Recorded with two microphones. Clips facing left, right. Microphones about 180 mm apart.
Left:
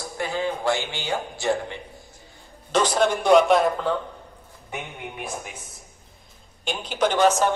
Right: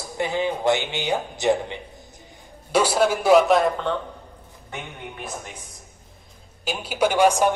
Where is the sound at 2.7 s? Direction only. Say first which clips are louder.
Right 1 dB; 10° right (ahead or behind); by 5.5 s 10° left (ahead or behind).